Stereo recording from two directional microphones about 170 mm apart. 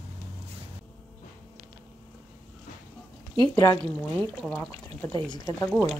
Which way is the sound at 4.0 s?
5° left (ahead or behind).